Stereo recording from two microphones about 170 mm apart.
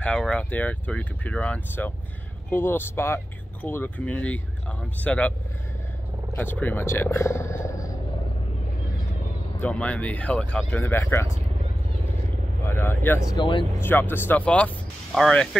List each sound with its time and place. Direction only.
0.0 s speech: 5° left (ahead or behind)
6.3 s speech: 10° left (ahead or behind)
9.6 s speech: 10° left (ahead or behind)
12.6 s speech: 15° left (ahead or behind)
13.3 s speech: 25° left (ahead or behind)
13.7 s speech: 10° left (ahead or behind)